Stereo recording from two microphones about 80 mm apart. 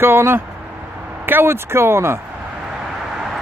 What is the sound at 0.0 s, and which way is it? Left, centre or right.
Speech, right.